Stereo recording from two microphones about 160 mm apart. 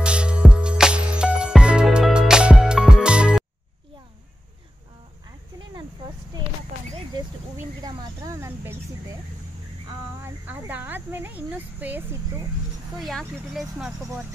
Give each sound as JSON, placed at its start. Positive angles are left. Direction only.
{"t": 0.0, "sound": "music", "side_deg": -5}
{"t": 7.8, "sound": "a sound", "side_deg": -20}
{"t": 10.2, "sound": "speech", "side_deg": -10}
{"t": 13.0, "sound": "speech", "side_deg": 0}